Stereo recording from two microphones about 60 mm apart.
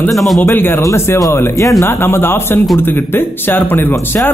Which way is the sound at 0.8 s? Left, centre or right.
Left.